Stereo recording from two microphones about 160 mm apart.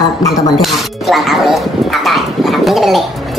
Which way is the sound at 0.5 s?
Centre (ahead or behind).